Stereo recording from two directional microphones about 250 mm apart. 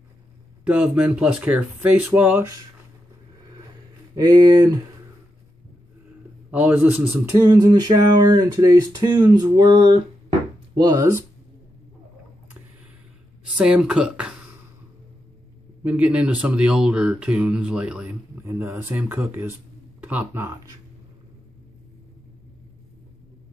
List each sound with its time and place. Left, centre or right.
0.7 s speech: centre
4.1 s speech: centre
6.5 s speech: centre
13.6 s speech: centre
15.8 s speech: centre